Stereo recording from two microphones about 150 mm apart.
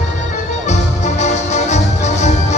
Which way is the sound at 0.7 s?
50° left (ahead or behind).